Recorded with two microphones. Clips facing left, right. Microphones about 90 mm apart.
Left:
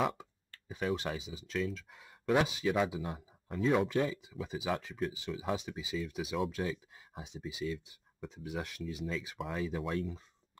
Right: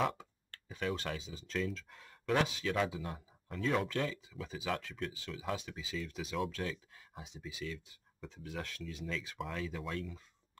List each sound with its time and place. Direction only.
0.2 s a sound: 15° left (ahead or behind)
0.9 s speech: 15° left (ahead or behind)
2.7 s speech: 10° left (ahead or behind)